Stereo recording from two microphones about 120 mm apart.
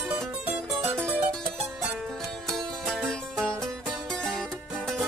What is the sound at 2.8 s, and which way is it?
Music, 5° left (ahead or behind).